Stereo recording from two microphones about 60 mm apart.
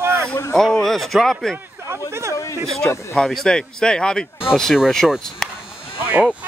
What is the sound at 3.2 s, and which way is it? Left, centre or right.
Speech, centre.